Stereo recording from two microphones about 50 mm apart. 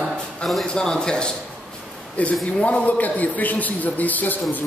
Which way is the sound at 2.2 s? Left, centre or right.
Left.